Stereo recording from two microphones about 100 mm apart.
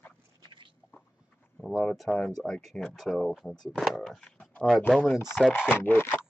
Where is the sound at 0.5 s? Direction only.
55° right (ahead or behind).